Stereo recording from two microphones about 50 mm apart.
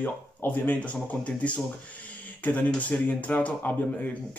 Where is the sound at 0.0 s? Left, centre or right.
Left.